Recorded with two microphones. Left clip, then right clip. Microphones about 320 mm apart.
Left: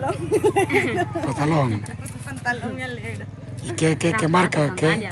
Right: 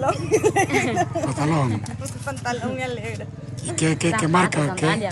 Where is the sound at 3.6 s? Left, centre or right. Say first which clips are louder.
Left 1 dB; centre.